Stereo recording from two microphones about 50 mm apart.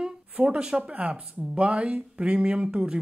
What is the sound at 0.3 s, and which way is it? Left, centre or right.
Speech, right.